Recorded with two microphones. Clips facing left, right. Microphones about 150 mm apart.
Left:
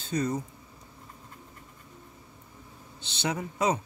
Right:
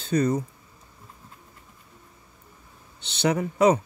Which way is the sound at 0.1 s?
70° right (ahead or behind).